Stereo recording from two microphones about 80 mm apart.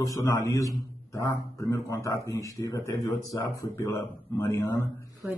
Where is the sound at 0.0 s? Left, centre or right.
Left.